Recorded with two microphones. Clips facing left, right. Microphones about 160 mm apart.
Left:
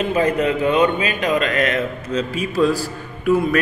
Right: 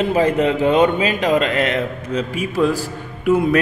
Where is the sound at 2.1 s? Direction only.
10° right (ahead or behind).